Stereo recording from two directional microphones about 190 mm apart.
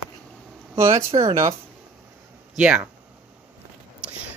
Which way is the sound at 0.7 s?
15° right (ahead or behind).